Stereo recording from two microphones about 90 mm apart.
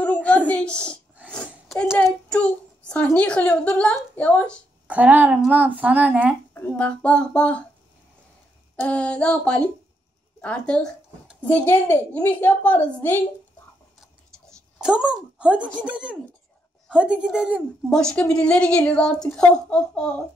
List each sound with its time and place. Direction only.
0.0 s a sound: 15° left (ahead or behind)
2.2 s a woman's voice: 15° left (ahead or behind)
4.8 s speech: 15° right (ahead or behind)
6.5 s a woman's voice: 20° left (ahead or behind)
8.8 s a woman's voice: 15° left (ahead or behind)
11.5 s a woman's voice: 25° left (ahead or behind)
14.8 s speech: 5° right (ahead or behind)
17.8 s a woman's voice: 10° left (ahead or behind)